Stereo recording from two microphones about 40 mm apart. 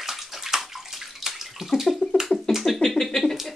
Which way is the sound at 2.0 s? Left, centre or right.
Left.